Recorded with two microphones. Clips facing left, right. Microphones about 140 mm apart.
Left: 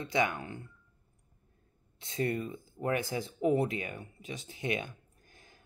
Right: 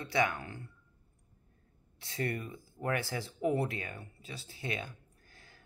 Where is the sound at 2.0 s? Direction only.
20° left (ahead or behind).